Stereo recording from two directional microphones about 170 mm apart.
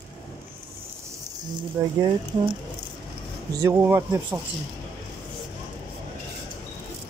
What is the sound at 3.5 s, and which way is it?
Speech, 15° right (ahead or behind).